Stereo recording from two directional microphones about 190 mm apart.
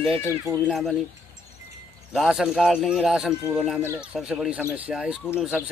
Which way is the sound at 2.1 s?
Centre (ahead or behind).